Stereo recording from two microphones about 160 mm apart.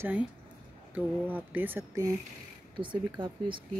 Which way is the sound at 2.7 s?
30° right (ahead or behind).